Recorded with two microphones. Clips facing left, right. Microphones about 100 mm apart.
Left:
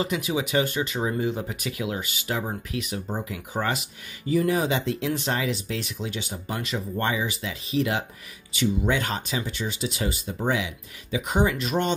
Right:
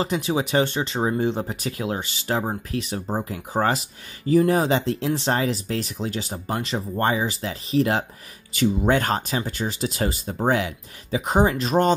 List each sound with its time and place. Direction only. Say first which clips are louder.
0.0 s speech: right 3 dB; 35° right (ahead or behind)